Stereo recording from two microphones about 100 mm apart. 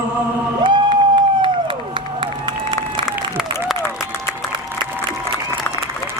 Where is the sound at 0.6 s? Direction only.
55° right (ahead or behind).